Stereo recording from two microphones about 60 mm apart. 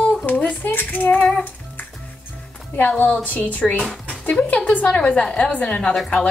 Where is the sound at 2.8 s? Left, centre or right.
Left.